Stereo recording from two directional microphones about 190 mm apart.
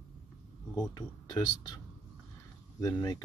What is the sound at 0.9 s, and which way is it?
Speech, 20° left (ahead or behind).